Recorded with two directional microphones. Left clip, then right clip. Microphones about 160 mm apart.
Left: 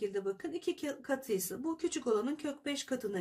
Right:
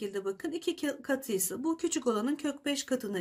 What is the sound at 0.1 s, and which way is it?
Speech, 25° right (ahead or behind).